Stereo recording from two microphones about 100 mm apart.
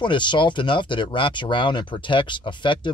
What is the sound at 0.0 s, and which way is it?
Speech, 50° left (ahead or behind).